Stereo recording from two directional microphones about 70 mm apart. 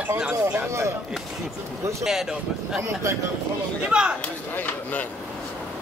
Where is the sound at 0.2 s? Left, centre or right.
Centre.